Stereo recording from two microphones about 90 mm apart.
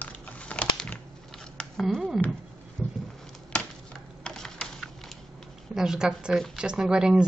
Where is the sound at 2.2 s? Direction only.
20° left (ahead or behind).